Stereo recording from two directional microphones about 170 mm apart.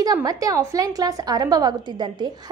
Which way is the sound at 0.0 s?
20° right (ahead or behind).